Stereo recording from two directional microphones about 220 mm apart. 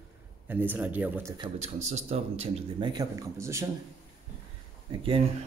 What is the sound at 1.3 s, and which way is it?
Speech, 25° right (ahead or behind).